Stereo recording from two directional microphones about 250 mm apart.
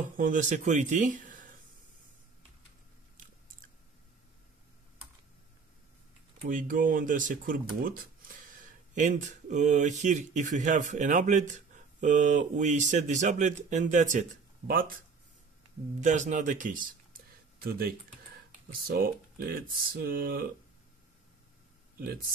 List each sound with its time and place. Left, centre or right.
0.2 s speech: right
6.4 s speech: right
16.0 s speech: right